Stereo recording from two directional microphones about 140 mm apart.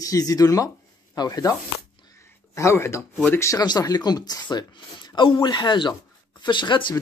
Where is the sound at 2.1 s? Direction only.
20° left (ahead or behind).